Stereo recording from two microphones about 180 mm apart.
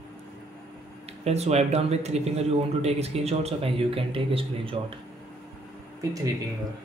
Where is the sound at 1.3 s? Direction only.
35° right (ahead or behind).